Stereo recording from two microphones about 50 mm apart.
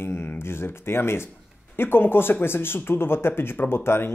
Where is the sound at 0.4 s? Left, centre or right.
Left.